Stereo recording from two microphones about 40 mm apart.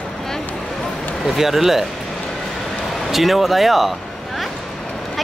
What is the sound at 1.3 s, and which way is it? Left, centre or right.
Speech, centre.